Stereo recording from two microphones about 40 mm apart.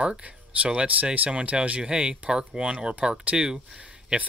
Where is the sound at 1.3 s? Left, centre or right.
Right.